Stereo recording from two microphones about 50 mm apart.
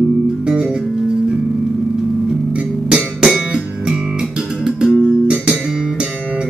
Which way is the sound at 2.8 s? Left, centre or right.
Centre.